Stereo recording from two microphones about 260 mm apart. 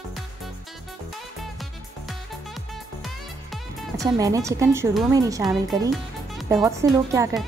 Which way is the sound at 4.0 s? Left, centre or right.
Centre.